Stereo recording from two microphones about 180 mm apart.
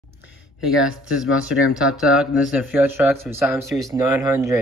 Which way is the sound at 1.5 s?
5° right (ahead or behind).